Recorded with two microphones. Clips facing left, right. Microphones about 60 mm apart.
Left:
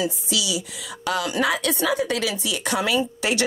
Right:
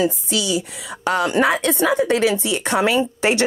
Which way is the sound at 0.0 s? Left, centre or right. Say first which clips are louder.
Right 5 dB; right.